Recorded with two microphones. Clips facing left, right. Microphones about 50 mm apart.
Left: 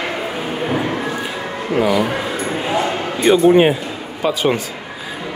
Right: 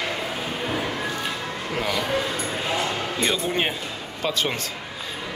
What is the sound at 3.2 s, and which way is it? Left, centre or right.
Speech, centre.